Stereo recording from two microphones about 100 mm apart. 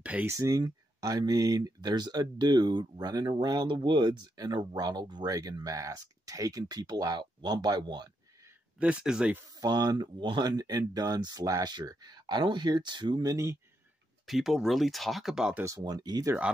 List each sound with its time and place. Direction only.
0.0 s a sound: 15° right (ahead or behind)
0.3 s speech: 35° right (ahead or behind)
8.7 s speech: 15° right (ahead or behind)
9.5 s speech: 40° right (ahead or behind)
13.3 s speech: 30° right (ahead or behind)
14.2 s speech: centre (ahead or behind)
15.8 s speech: 45° right (ahead or behind)